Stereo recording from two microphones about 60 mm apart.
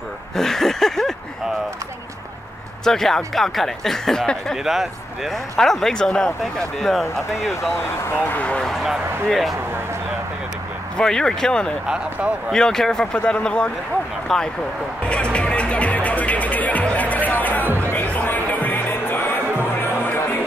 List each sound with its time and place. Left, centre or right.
0.4 s a sound: centre
2.8 s speech: centre
4.6 s speech: centre
7.8 s speech: left
8.4 s speech: left
9.3 s speech: centre
11.0 s speech: centre
11.9 s speech: centre
12.5 s speech: centre
15.0 s music: centre
17.6 s music: right
17.9 s music: left